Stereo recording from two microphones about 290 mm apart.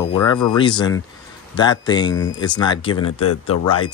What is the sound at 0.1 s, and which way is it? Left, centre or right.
Speech, centre.